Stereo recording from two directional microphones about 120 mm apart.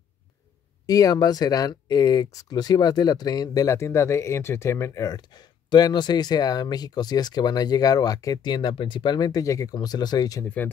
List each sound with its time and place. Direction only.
0.8 s speech: 30° left (ahead or behind)
10.4 s speech: 10° left (ahead or behind)